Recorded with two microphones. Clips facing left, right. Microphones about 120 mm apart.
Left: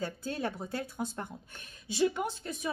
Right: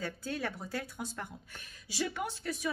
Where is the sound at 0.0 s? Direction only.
25° left (ahead or behind).